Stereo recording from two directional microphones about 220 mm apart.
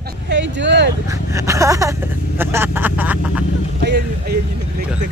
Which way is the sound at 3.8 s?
45° right (ahead or behind).